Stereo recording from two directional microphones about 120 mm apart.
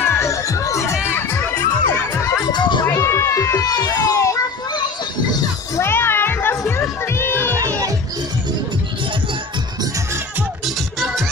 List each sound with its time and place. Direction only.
0.0 s music: 20° left (ahead or behind)
2.4 s music: 40° left (ahead or behind)
2.9 s cat: 25° left (ahead or behind)
5.8 s music: 20° left (ahead or behind)
7.2 s crowd: 20° left (ahead or behind)